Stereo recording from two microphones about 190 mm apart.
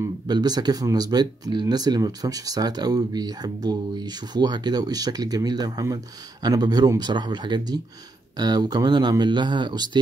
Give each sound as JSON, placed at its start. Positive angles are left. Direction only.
{"t": 0.0, "sound": "speech", "side_deg": -20}